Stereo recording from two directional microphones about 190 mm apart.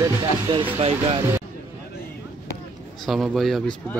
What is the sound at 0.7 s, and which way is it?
Speech, 30° right (ahead or behind).